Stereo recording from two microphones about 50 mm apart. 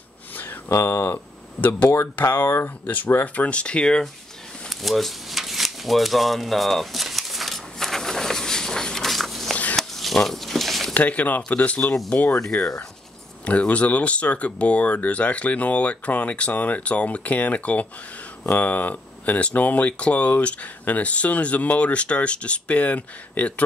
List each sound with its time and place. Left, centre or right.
0.7 s speech: left
2.2 s speech: left
2.6 s speech: left; by 4.0 s centre
4.6 s a sound: centre
10.9 s speech: left
12.4 s speech: centre
13.5 s speech: left